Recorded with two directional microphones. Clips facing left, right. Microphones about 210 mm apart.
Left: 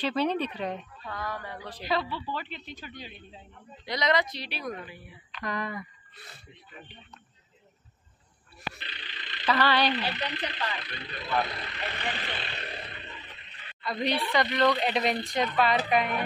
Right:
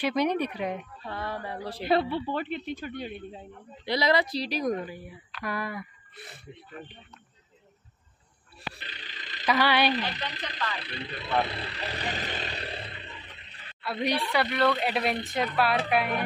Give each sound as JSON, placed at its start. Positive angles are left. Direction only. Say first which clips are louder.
{"t": 0.0, "sound": "speech", "louder": "right 2 dB", "side_deg": -15}
{"t": 1.0, "sound": "speech", "louder": "right 2 dB", "side_deg": -30}
{"t": 2.3, "sound": "speech", "louder": "right 7 dB", "side_deg": -55}
{"t": 3.8, "sound": "speech", "louder": "right 2 dB", "side_deg": -30}
{"t": 5.3, "sound": "a sound", "louder": "even", "side_deg": -5}
{"t": 8.5, "sound": "a sound", "louder": "left 1 dB", "side_deg": -40}
{"t": 9.5, "sound": "speech", "louder": "right 1 dB", "side_deg": -10}
{"t": 10.3, "sound": "speech", "louder": "left 1 dB", "side_deg": -35}
{"t": 13.7, "sound": "a woman's voice", "louder": "right 1 dB", "side_deg": -5}